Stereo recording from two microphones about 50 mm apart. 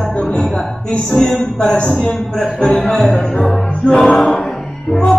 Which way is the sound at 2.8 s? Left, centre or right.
Centre.